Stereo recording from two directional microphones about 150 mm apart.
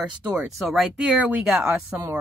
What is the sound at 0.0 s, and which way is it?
Speech, 5° right (ahead or behind).